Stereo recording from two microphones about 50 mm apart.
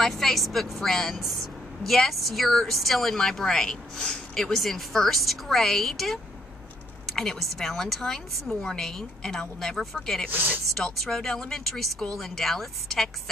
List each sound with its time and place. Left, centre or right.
0.0 s a woman's voice: centre
4.5 s a woman's voice: centre
10.3 s speech: right
10.8 s speech: centre